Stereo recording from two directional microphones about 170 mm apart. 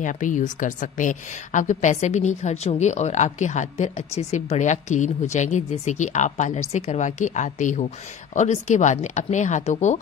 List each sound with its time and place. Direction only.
0.0 s a woman's voice: 50° left (ahead or behind)